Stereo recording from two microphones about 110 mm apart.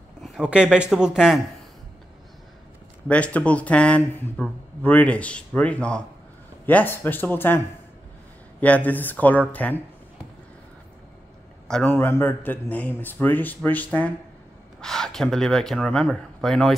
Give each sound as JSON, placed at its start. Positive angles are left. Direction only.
{"t": 0.2, "sound": "speech", "side_deg": -5}
{"t": 3.1, "sound": "speech", "side_deg": 10}
{"t": 11.6, "sound": "a sound", "side_deg": 5}
{"t": 11.9, "sound": "speech", "side_deg": 20}
{"t": 14.8, "sound": "speech", "side_deg": 5}